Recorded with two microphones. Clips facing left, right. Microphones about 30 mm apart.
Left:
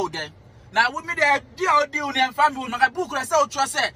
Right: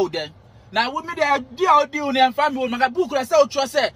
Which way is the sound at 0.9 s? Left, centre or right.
Right.